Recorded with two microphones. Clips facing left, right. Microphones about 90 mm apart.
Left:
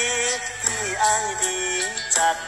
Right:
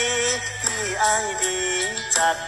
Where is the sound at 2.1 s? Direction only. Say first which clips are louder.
Even; 10° right (ahead or behind).